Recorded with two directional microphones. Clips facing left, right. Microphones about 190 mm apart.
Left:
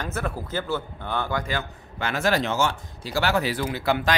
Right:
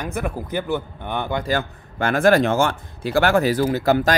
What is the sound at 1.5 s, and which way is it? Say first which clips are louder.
Speech: right 7 dB; 50° right (ahead or behind).